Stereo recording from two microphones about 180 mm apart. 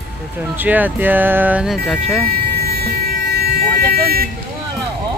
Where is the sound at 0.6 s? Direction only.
10° right (ahead or behind).